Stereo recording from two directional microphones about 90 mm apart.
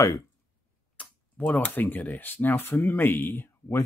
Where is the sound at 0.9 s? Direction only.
15° left (ahead or behind).